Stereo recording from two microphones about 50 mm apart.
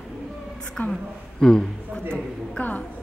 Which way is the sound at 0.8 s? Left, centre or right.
Left.